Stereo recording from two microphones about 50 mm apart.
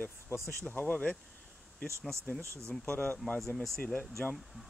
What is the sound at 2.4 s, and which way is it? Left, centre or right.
Speech, right.